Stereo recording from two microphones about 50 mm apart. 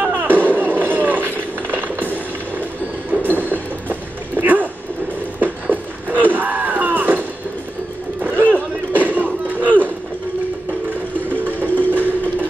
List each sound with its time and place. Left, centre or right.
0.0 s music: right
0.6 s a sound: right
8.2 s music: right
11.4 s music: right